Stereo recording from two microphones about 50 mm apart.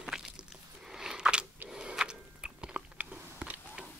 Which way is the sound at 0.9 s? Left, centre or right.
Centre.